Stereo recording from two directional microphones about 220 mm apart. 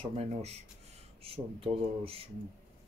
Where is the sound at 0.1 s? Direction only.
30° right (ahead or behind).